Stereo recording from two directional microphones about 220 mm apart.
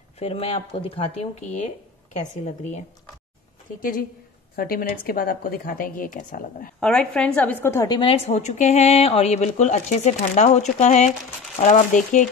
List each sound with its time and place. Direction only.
0.2 s speech: 25° left (ahead or behind)
4.6 s speech: 40° left (ahead or behind)
6.8 s a woman's voice: 5° left (ahead or behind)
8.0 s speech: 30° left (ahead or behind)